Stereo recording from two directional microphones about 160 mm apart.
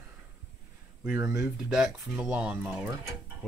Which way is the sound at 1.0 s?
15° right (ahead or behind).